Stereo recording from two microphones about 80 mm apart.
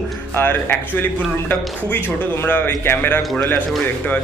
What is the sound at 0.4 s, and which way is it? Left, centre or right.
A man's voice, left.